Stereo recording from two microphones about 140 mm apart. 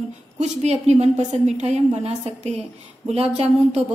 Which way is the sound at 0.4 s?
50° right (ahead or behind).